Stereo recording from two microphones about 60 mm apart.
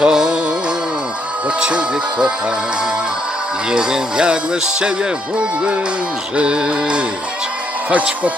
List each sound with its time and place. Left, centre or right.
0.0 s music: centre
1.6 s speech: centre
3.7 s speech: centre
6.3 s speech: centre